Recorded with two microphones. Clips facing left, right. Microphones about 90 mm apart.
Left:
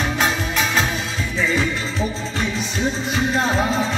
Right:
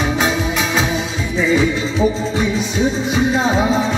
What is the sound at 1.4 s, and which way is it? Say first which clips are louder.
Music: right 6 dB; 5° right (ahead or behind).